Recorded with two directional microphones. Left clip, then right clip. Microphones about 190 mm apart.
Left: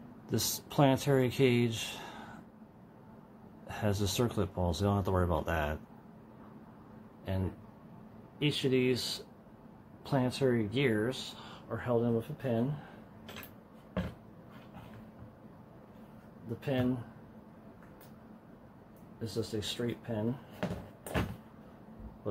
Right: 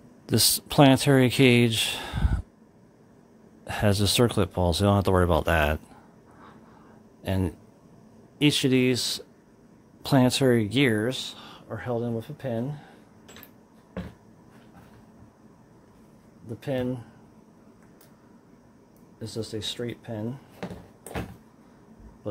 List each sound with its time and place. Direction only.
0.3 s speech: 50° right (ahead or behind)
3.6 s speech: 50° right (ahead or behind)
7.2 s speech: 65° right (ahead or behind); by 12.6 s 50° right (ahead or behind)
16.5 s speech: 50° right (ahead or behind)
19.3 s speech: 50° right (ahead or behind)